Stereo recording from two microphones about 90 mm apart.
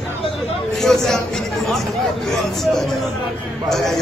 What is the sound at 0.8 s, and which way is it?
Speech, 5° left (ahead or behind).